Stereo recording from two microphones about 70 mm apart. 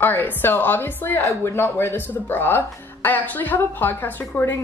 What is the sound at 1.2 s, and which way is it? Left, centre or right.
A woman's voice, left.